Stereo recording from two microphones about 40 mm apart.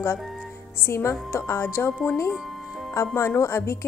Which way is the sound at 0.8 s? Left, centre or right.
Left.